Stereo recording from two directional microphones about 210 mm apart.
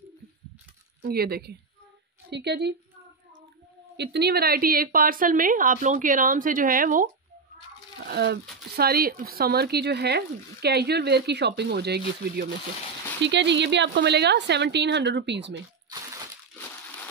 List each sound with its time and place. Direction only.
1.0 s speech: 50° right (ahead or behind)
3.9 s a woman's voice: 55° right (ahead or behind)
8.1 s a woman's voice: 50° right (ahead or behind)